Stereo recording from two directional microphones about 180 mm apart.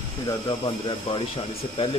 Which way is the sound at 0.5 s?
25° left (ahead or behind).